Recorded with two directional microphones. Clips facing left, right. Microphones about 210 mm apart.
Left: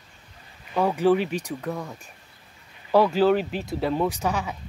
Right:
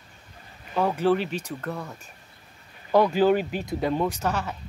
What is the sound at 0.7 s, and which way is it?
Speech, 10° left (ahead or behind).